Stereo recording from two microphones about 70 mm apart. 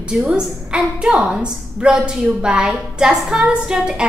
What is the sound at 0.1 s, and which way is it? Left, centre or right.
A woman's voice, centre.